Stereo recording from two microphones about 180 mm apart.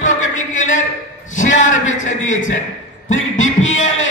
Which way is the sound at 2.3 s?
40° left (ahead or behind).